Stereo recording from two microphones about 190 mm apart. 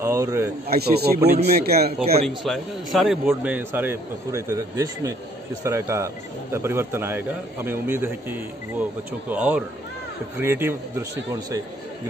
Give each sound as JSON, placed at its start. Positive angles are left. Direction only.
{"t": 0.0, "sound": "a man's voice", "side_deg": -15}
{"t": 0.7, "sound": "a man's voice", "side_deg": -55}
{"t": 2.2, "sound": "a man's voice", "side_deg": 0}